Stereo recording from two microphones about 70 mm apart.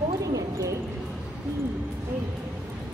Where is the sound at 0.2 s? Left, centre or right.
Right.